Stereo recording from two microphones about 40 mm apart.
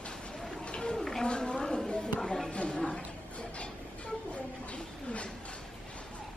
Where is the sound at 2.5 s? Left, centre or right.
Left.